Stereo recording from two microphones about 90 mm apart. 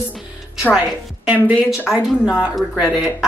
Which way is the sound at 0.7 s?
15° right (ahead or behind).